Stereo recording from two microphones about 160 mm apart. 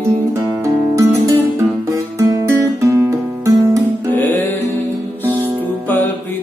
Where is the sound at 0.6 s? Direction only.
20° right (ahead or behind).